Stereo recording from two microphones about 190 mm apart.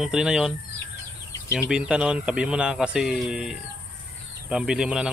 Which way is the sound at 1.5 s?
5° right (ahead or behind).